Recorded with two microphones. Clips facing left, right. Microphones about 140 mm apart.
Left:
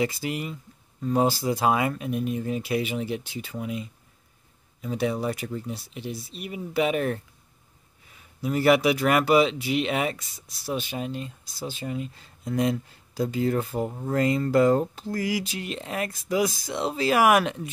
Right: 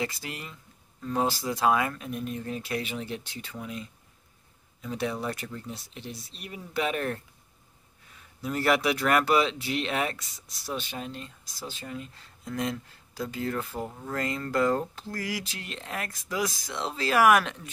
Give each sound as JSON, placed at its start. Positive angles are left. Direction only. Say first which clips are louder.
{"t": 0.0, "sound": "speech", "louder": "left 7 dB", "side_deg": 15}
{"t": 8.4, "sound": "speech", "louder": "left 5 dB", "side_deg": 5}